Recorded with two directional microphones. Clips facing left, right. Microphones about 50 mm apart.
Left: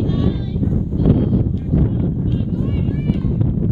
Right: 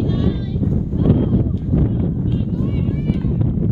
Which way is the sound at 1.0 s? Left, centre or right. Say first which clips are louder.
Even; right.